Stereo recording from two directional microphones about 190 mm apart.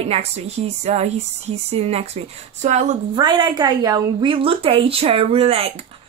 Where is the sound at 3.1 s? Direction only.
25° right (ahead or behind).